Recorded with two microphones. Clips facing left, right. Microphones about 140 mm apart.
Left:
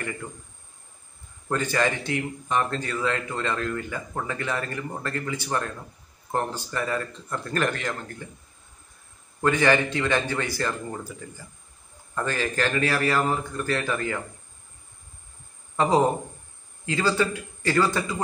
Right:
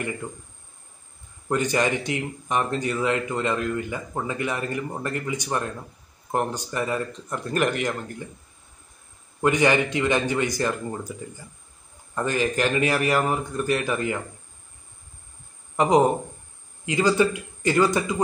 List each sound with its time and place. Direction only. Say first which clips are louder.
1.5 s speech: right 2 dB; 15° right (ahead or behind)
9.4 s speech: right 1 dB; 15° right (ahead or behind)
15.7 s speech: right 2 dB; 15° right (ahead or behind)